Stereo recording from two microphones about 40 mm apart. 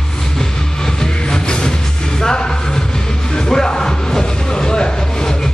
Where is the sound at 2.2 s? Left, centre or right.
Centre.